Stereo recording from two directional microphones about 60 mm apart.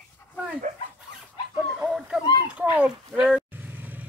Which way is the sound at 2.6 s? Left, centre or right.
Centre.